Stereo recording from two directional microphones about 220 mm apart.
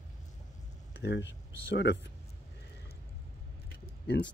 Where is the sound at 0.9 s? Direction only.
50° left (ahead or behind).